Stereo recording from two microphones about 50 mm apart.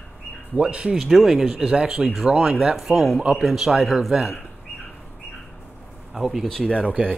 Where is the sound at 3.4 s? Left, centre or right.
Centre.